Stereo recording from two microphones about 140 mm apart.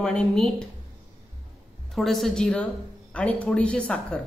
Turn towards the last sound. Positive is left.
turn(degrees=5)  # may be behind; listen again after turning